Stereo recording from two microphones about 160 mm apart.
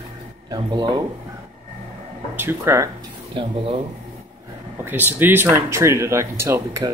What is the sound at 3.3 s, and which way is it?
Speech, 35° right (ahead or behind).